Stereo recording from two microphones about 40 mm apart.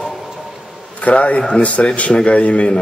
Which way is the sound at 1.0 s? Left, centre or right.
Left.